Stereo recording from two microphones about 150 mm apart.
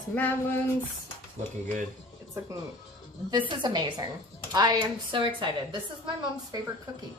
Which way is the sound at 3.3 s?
30° right (ahead or behind).